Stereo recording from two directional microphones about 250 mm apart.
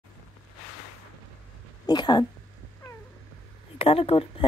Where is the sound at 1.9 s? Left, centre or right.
Centre.